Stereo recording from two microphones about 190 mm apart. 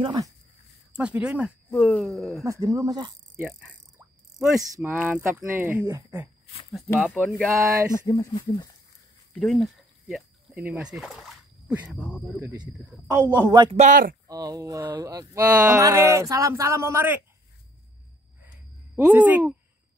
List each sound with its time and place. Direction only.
0.0 s speech: 20° right (ahead or behind)
0.9 s speech: 5° right (ahead or behind)
2.4 s speech: 15° right (ahead or behind)
3.3 s speech: 10° right (ahead or behind)
7.2 s speech: 5° left (ahead or behind)
7.9 s speech: 15° left (ahead or behind)
9.3 s speech: 5° left (ahead or behind)
13.7 s speech: 45° right (ahead or behind)
14.2 s speech: 20° right (ahead or behind)
18.9 s speech: 10° right (ahead or behind)